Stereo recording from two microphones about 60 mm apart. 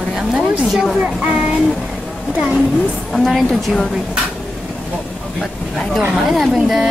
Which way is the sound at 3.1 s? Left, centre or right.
Centre.